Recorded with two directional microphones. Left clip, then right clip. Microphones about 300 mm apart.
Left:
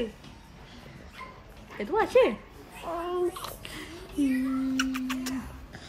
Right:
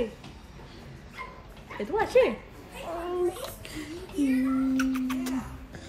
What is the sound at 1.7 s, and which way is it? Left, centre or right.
Speech, left.